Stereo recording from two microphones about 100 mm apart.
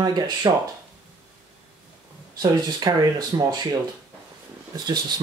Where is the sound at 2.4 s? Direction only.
40° right (ahead or behind).